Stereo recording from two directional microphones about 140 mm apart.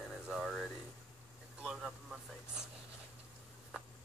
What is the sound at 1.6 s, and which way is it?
Vehicle, 5° right (ahead or behind).